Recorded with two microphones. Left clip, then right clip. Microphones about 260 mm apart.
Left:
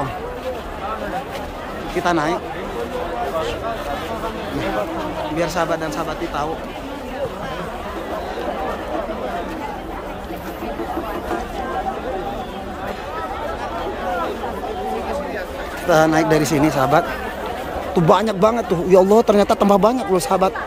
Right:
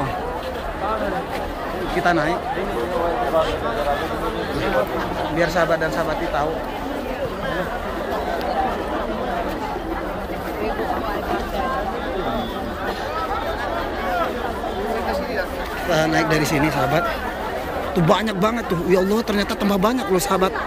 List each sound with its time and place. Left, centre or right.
2.0 s speech: centre
15.9 s speech: left
18.9 s speech: left
19.2 s speech: centre